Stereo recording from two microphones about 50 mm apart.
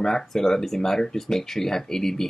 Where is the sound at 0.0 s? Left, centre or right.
Centre.